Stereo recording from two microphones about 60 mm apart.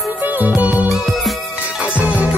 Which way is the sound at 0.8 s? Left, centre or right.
Centre.